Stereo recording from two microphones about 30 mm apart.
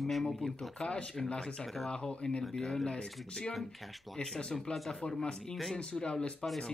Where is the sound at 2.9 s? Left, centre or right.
Left.